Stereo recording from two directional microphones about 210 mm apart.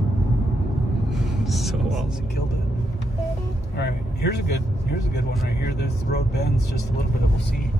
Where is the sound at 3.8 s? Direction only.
50° left (ahead or behind).